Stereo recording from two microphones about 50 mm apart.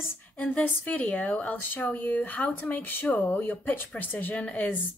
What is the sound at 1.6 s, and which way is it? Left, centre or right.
Speech, left.